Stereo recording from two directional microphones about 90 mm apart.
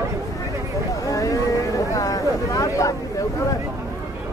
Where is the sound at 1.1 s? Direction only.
40° left (ahead or behind).